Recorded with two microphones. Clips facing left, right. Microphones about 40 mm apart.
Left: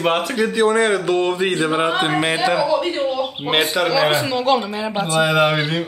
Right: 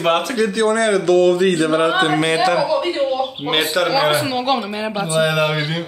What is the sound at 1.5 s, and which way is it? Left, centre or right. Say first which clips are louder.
A man's voice: right 3 dB; centre.